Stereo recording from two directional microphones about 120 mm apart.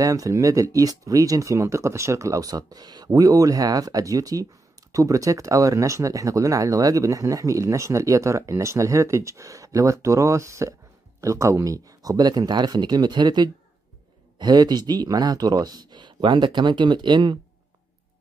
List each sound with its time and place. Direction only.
0.0 s speech: 30° right (ahead or behind)